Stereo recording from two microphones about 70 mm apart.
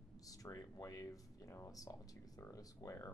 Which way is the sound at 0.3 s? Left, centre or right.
Left.